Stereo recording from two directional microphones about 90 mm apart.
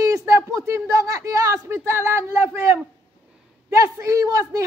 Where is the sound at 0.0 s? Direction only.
35° right (ahead or behind).